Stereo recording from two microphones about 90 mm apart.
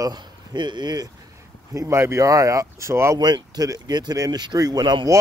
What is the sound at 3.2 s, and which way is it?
Speech, 50° right (ahead or behind).